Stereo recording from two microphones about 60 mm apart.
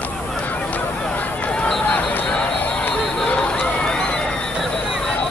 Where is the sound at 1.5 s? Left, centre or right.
Centre.